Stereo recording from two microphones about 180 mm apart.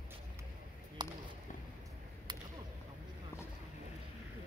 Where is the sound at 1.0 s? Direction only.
25° right (ahead or behind).